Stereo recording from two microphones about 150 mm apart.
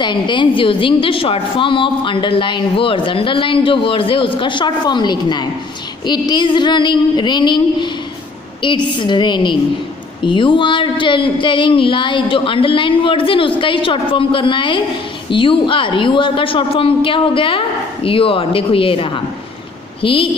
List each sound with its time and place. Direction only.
0.0 s a woman's voice: 30° left (ahead or behind)